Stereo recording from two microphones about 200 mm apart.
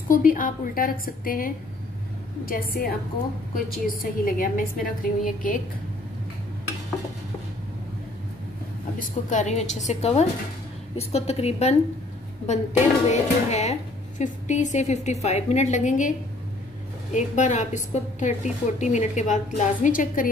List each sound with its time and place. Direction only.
0.1 s a woman's voice: 45° left (ahead or behind)
8.9 s speech: 35° left (ahead or behind)